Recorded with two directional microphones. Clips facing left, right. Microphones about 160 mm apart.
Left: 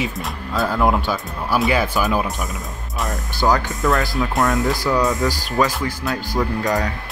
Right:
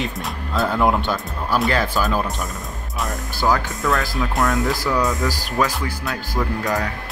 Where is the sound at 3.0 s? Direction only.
Centre (ahead or behind).